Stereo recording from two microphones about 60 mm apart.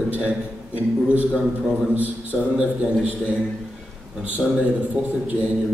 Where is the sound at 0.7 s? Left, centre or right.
Right.